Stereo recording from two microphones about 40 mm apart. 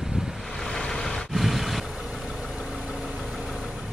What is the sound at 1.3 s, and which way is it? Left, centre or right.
Vehicle, centre.